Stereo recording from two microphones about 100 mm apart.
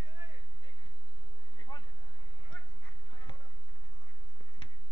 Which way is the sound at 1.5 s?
50° left (ahead or behind).